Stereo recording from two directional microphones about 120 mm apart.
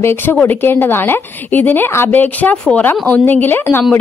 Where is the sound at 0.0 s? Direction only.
15° left (ahead or behind).